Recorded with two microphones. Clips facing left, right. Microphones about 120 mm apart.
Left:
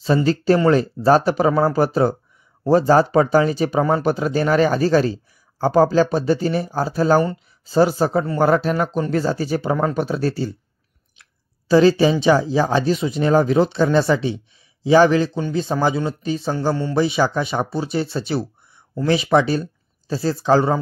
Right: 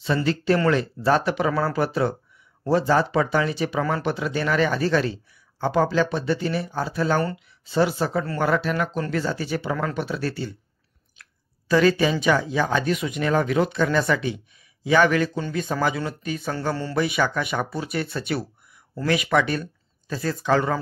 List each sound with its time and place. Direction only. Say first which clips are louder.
0.0 s a man's voice: left 6 dB; 35° left (ahead or behind)